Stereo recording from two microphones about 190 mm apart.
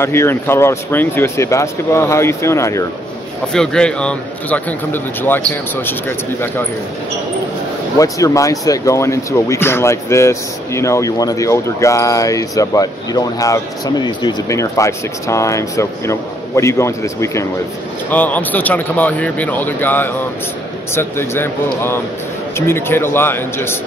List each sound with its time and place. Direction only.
0.0 s speech: 15° left (ahead or behind)
3.5 s speech: 5° left (ahead or behind)
8.0 s speech: 15° left (ahead or behind)